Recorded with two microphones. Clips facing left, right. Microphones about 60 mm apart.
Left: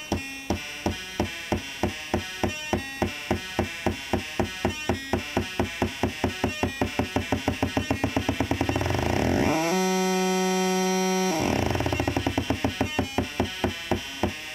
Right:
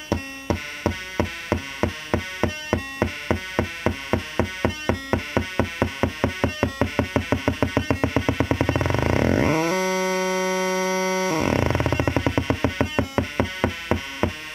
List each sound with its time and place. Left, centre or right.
0.1 s music: right
10.4 s synthesizer: right